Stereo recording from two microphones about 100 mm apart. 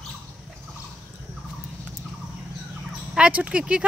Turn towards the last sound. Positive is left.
turn(degrees=-10)  # may be behind; listen again after turning